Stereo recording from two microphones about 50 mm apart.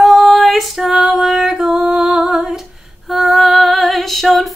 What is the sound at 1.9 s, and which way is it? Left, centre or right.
Music, right.